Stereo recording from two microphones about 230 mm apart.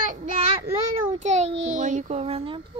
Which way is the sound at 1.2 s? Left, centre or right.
Right.